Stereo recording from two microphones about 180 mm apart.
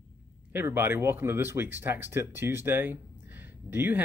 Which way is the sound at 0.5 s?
10° right (ahead or behind).